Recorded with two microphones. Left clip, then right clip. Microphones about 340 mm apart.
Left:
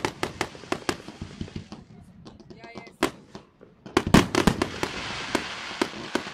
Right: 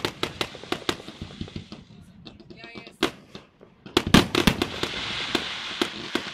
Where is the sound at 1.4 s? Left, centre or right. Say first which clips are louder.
Even; centre.